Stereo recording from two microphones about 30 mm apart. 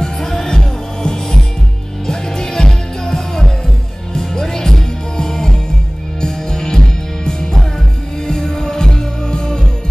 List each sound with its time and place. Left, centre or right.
0.3 s music: centre